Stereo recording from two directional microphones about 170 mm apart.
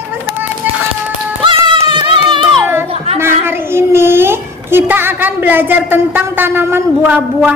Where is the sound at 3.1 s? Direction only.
15° right (ahead or behind).